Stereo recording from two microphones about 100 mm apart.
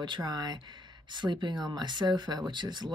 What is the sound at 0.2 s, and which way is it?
Speech, 40° right (ahead or behind).